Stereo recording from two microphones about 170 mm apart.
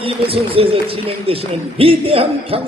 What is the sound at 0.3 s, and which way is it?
A man's voice, 35° right (ahead or behind).